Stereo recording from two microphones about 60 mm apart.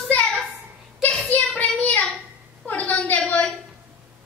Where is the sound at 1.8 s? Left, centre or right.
Left.